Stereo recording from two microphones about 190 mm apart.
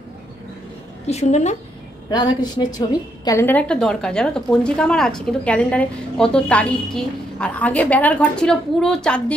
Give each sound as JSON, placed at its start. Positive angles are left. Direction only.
{"t": 1.0, "sound": "a woman's voice", "side_deg": 35}
{"t": 2.0, "sound": "a woman's voice", "side_deg": 20}